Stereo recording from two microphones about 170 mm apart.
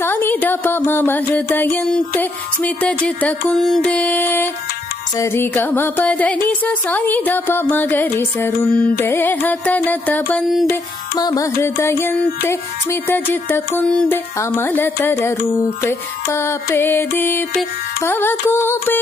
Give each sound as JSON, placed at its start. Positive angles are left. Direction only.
{"t": 0.0, "sound": "mantra", "side_deg": 10}
{"t": 10.7, "sound": "mantra", "side_deg": 20}